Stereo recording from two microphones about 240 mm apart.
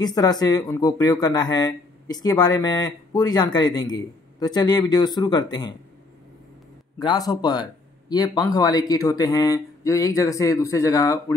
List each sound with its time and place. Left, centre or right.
0.0 s speech: centre
7.0 s speech: centre